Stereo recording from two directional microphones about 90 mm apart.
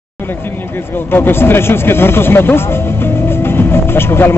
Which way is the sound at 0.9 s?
25° left (ahead or behind).